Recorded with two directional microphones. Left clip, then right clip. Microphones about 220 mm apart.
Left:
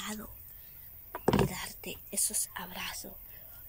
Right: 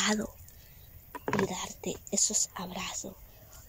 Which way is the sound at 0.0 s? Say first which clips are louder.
Right 12 dB; 35° right (ahead or behind).